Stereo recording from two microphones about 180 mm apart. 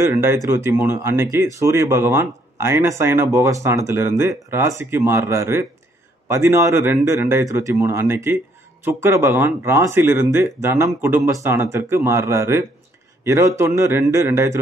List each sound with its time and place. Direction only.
0.0 s speech: 15° right (ahead or behind)